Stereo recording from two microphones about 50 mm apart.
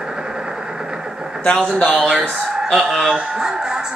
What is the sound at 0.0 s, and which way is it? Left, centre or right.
Vehicle, centre.